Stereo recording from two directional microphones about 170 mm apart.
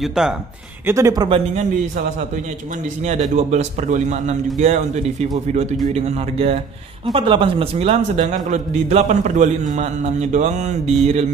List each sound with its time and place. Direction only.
0.0 s speech: 5° right (ahead or behind)
0.8 s speech: 20° right (ahead or behind)
3.3 s a man's voice: 40° right (ahead or behind)